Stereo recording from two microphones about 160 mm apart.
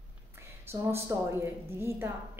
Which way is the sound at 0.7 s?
15° right (ahead or behind).